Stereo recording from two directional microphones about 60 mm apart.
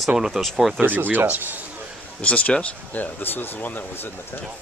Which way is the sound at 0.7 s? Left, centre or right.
Right.